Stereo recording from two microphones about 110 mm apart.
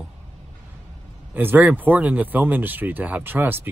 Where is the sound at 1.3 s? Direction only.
15° right (ahead or behind).